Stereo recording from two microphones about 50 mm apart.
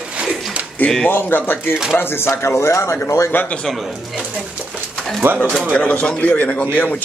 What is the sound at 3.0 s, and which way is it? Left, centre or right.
Speech, left.